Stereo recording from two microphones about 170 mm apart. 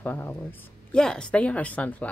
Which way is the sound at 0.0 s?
10° left (ahead or behind).